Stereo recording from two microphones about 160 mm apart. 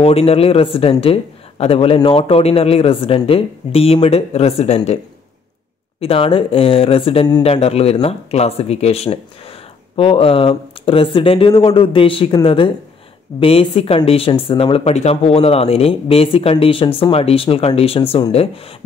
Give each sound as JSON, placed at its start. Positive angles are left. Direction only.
{"t": 0.0, "sound": "speech", "side_deg": 40}
{"t": 5.9, "sound": "speech", "side_deg": 35}